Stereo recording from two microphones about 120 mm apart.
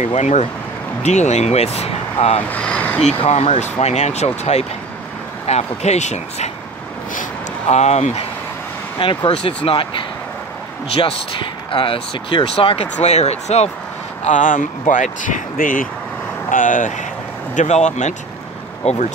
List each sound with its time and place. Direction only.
0.0 s speech: 75° left (ahead or behind); by 2.4 s 55° left (ahead or behind)
2.5 s speech: 10° left (ahead or behind)
3.2 s speech: 60° left (ahead or behind)
8.9 s speech: 40° left (ahead or behind)
12.9 s speech: 65° left (ahead or behind)
14.2 s speech: 90° left
16.4 s speech: 90° left
17.6 s speech: 75° left (ahead or behind)